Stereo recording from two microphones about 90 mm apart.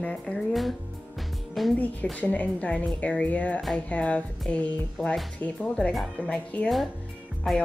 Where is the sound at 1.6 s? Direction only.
Centre (ahead or behind).